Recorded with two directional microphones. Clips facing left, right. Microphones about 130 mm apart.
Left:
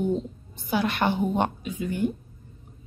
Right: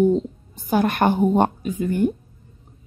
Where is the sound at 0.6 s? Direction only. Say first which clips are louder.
Right 6 dB; 45° right (ahead or behind).